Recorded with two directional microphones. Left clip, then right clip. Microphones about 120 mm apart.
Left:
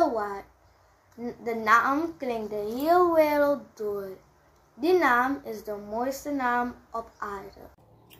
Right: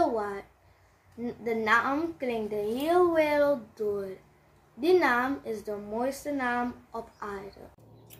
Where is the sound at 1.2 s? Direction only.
25° right (ahead or behind).